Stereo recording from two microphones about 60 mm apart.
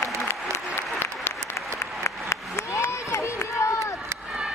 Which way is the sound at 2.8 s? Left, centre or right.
Left.